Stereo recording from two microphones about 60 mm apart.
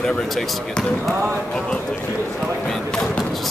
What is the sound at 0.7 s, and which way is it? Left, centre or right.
Speech, centre.